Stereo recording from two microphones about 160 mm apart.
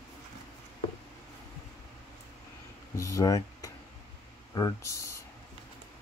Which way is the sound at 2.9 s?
20° left (ahead or behind).